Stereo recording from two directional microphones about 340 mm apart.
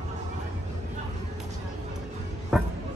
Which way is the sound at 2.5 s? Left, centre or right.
Centre.